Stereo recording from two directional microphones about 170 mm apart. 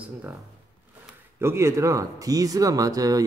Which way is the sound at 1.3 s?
15° right (ahead or behind).